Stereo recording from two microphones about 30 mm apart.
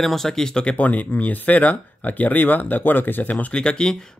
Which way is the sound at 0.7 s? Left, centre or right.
Left.